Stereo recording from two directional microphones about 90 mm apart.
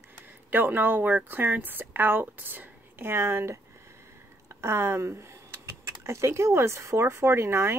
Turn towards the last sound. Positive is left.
turn(degrees=-30)  # may be behind; listen again after turning